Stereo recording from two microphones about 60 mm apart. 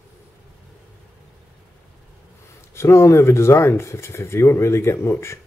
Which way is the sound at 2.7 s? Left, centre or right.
Left.